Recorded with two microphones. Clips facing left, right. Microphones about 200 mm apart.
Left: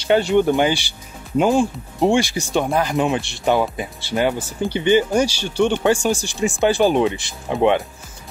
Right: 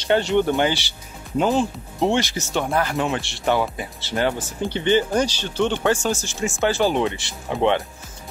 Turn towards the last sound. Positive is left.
turn(degrees=15)  # may be behind; listen again after turning